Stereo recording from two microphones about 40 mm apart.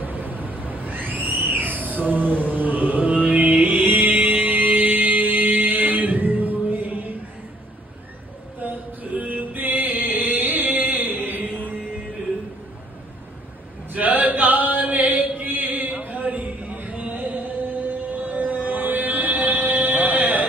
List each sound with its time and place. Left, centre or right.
0.0 s a sound: right
3.7 s music: right
8.5 s music: right
13.9 s chant: right